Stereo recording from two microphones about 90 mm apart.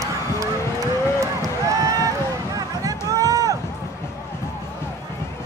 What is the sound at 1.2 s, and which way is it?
Run, 40° right (ahead or behind).